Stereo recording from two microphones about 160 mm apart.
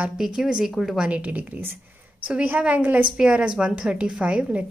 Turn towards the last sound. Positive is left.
turn(degrees=-10)  # may be behind; listen again after turning